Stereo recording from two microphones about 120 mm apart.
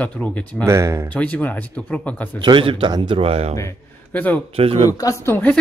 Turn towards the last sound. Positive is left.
turn(degrees=30)  # may be behind; listen again after turning